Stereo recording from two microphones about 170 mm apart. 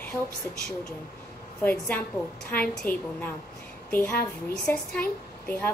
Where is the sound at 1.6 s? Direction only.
10° left (ahead or behind).